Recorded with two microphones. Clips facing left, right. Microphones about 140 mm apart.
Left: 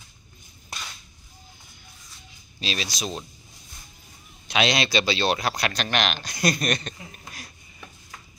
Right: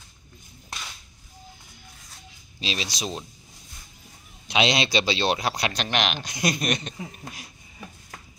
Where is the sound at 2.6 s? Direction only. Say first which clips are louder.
Even; 20° right (ahead or behind).